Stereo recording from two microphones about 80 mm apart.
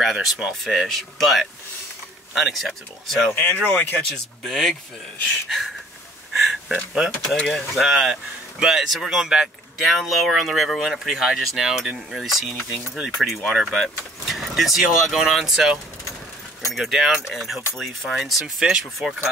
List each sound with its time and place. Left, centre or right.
0.0 s speech: centre
3.3 s speech: left
4.1 s speech: centre
6.3 s a sound: centre
7.2 s speech: centre